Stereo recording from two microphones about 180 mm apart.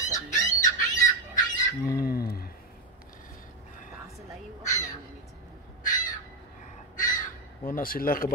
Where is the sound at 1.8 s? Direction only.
55° left (ahead or behind).